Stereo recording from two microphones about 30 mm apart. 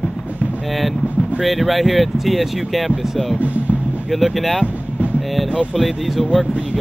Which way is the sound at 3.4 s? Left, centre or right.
Right.